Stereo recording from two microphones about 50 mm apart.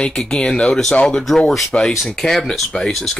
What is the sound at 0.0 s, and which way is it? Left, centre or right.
Speech, centre.